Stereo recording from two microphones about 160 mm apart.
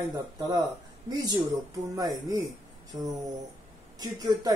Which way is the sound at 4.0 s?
25° right (ahead or behind).